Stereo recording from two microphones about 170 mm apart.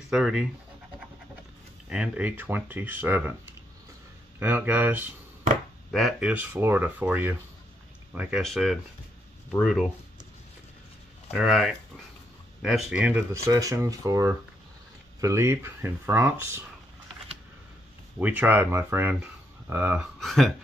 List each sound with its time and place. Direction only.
0.1 s speech: 5° right (ahead or behind)
1.9 s speech: 5° right (ahead or behind)
5.9 s speech: centre (ahead or behind)
11.3 s speech: centre (ahead or behind)
13.3 s speech: 20° right (ahead or behind)
18.2 s speech: 10° right (ahead or behind)
20.2 s speech: centre (ahead or behind)